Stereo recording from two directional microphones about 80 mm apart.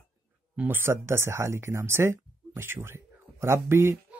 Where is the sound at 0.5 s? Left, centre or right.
Centre.